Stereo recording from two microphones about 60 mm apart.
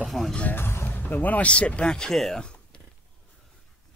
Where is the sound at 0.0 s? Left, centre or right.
Centre.